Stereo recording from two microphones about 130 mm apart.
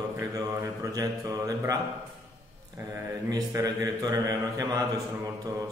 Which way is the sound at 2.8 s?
25° right (ahead or behind).